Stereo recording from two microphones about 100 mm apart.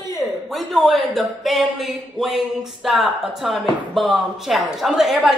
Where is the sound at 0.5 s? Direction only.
Centre (ahead or behind).